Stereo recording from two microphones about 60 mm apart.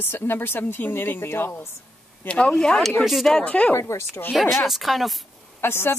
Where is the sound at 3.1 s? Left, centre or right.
Centre.